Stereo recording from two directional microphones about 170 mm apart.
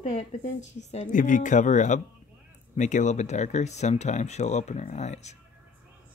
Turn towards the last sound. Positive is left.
turn(degrees=40)  # may be behind; listen again after turning